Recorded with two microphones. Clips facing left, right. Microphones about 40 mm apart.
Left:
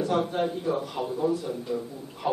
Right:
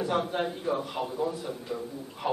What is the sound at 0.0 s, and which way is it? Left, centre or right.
A man's voice, centre.